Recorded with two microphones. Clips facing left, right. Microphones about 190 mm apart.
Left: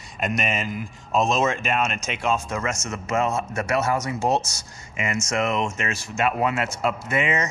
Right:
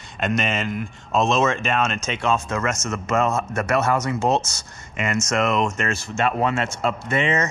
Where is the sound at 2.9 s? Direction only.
55° right (ahead or behind).